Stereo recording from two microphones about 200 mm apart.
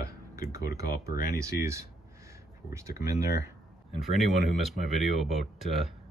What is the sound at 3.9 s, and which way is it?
Speech, centre (ahead or behind).